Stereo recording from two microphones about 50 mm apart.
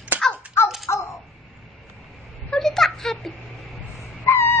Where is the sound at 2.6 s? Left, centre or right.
Centre.